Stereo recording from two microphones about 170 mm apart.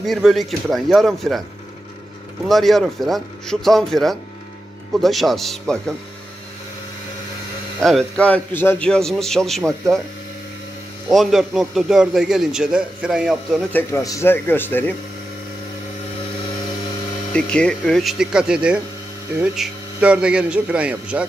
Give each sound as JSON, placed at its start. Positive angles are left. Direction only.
{"t": 0.0, "sound": "a man's voice", "side_deg": 0}
{"t": 2.4, "sound": "a man's voice", "side_deg": 0}
{"t": 7.8, "sound": "a man's voice", "side_deg": 0}
{"t": 11.1, "sound": "a man's voice", "side_deg": 0}
{"t": 13.7, "sound": "speech", "side_deg": 15}
{"t": 17.3, "sound": "a man's voice", "side_deg": 5}